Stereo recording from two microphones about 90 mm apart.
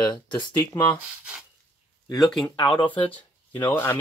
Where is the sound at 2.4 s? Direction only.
60° left (ahead or behind).